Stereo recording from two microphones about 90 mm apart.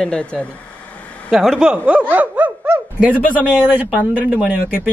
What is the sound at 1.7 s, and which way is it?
Speech, 15° right (ahead or behind).